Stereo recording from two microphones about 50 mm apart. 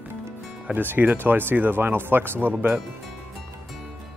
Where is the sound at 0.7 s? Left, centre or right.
Right.